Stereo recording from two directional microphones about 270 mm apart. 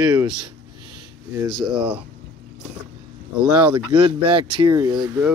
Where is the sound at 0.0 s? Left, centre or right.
Centre.